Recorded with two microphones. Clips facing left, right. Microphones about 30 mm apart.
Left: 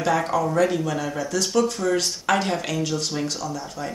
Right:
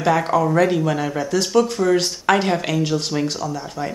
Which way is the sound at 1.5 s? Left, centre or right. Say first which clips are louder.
Right 5 dB; right.